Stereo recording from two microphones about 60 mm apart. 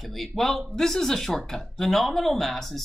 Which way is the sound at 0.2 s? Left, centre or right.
Centre.